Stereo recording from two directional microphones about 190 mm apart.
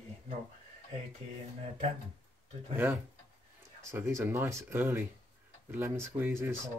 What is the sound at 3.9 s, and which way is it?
Speech, 10° right (ahead or behind).